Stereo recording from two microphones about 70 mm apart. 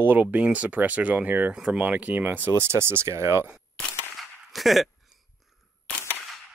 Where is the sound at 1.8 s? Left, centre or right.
Right.